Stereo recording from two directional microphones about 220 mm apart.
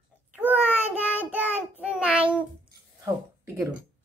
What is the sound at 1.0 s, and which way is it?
Speech, 5° right (ahead or behind).